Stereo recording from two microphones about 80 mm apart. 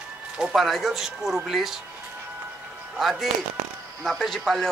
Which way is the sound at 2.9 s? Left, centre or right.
Centre.